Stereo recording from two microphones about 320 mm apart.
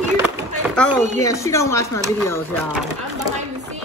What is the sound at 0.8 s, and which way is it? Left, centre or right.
Speech, centre.